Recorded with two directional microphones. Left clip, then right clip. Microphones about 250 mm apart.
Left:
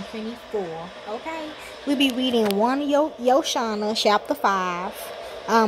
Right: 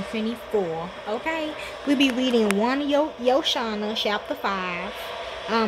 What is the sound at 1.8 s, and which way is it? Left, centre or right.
Speech, centre.